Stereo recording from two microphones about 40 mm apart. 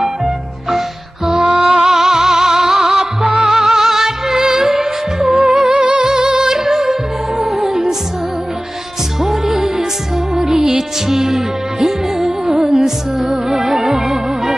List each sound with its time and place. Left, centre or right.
0.0 s music: centre
5.7 s music: right
6.5 s music: centre
9.2 s music: centre